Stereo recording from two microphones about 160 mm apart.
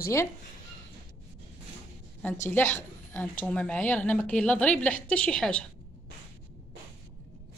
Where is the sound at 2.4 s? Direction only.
10° left (ahead or behind).